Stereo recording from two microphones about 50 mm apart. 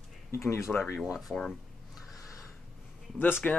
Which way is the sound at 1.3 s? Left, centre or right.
Centre.